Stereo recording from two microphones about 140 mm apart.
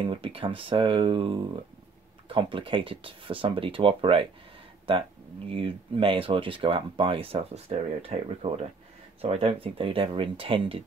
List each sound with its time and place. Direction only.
0.0 s speech: 40° right (ahead or behind)